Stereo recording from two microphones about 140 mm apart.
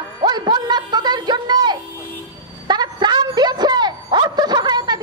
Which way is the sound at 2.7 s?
30° right (ahead or behind).